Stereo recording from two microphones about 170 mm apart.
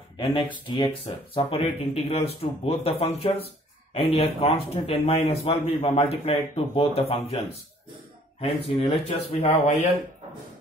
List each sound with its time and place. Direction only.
0.2 s speech: 25° left (ahead or behind)